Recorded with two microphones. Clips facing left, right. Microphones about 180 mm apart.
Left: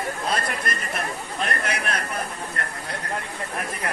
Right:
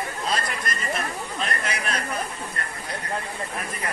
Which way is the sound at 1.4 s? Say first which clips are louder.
Left 3 dB; 55° left (ahead or behind).